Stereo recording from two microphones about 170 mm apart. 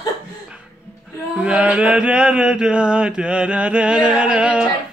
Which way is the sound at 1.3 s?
5° right (ahead or behind).